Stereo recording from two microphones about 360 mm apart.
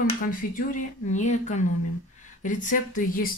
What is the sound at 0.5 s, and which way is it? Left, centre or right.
Speech, left.